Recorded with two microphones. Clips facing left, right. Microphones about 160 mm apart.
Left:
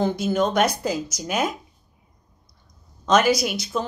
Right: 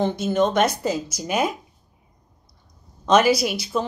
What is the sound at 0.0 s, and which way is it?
A woman's voice, centre (ahead or behind).